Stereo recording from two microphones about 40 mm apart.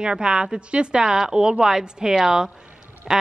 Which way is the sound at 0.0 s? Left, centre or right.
Right.